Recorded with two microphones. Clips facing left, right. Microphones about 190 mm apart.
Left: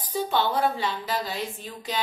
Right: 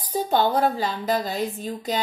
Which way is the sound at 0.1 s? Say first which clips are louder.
Right 4 dB; 40° right (ahead or behind).